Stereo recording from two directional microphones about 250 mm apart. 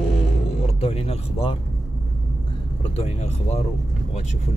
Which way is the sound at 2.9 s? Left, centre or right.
Left.